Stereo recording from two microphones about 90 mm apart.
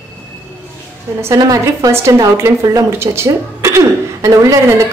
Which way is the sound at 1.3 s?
40° right (ahead or behind).